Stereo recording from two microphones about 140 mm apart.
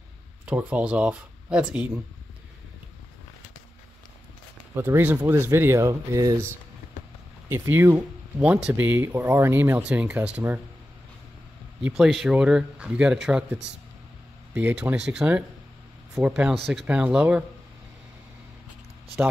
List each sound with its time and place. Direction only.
0.5 s speech: 10° right (ahead or behind)
4.7 s speech: 15° right (ahead or behind)
11.8 s speech: centre (ahead or behind)